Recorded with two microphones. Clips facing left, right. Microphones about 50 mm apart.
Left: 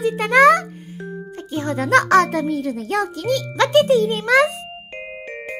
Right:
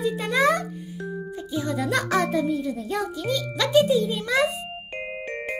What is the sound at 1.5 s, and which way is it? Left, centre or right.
A child's voice, left.